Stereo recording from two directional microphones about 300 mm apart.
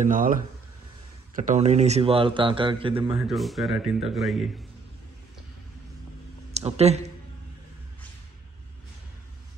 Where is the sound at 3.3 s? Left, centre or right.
Centre.